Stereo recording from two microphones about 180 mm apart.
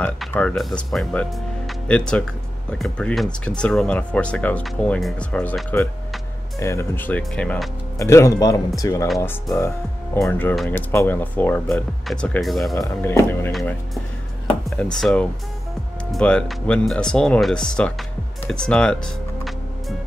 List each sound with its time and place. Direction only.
0.0 s speech: 5° left (ahead or behind)
8.0 s speech: 15° left (ahead or behind); by 12.8 s centre (ahead or behind)
12.8 s speech: 15° left (ahead or behind)
13.5 s speech: centre (ahead or behind)
14.8 s speech: 5° left (ahead or behind)